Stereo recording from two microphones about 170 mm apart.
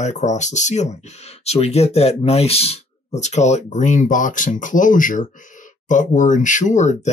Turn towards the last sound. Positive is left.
turn(degrees=45)  # may be behind; listen again after turning